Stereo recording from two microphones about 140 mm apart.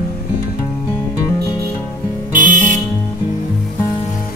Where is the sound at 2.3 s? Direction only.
70° right (ahead or behind).